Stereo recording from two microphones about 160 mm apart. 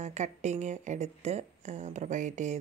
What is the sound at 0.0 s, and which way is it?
A woman's voice, 45° right (ahead or behind).